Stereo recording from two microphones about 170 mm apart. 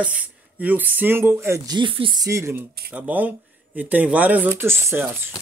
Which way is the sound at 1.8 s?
30° right (ahead or behind).